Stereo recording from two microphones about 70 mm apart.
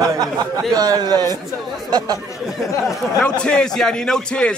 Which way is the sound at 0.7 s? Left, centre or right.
Right.